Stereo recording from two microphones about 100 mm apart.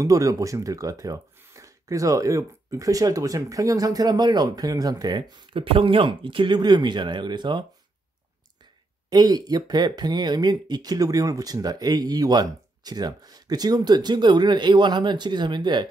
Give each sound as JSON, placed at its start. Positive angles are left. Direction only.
{"t": 0.0, "sound": "speech", "side_deg": -35}
{"t": 5.3, "sound": "speech", "side_deg": -60}
{"t": 9.1, "sound": "speech", "side_deg": -40}